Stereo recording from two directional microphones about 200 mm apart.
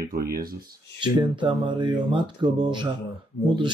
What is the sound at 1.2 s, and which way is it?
Speech, 25° right (ahead or behind).